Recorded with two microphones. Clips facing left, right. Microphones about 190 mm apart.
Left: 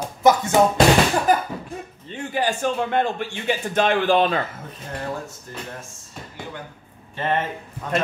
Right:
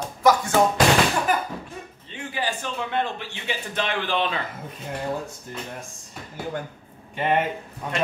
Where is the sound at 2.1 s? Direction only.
45° left (ahead or behind).